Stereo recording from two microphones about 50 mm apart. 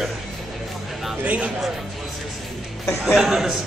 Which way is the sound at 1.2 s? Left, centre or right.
Right.